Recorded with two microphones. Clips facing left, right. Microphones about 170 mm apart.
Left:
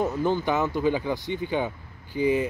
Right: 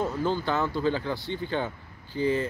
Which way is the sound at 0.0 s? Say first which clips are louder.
Left 3 dB; 20° left (ahead or behind).